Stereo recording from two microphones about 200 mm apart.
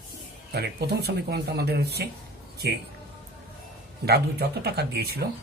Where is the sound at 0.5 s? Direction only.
55° right (ahead or behind).